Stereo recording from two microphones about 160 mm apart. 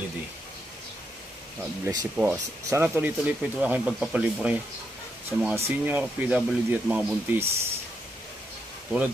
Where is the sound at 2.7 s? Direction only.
10° right (ahead or behind).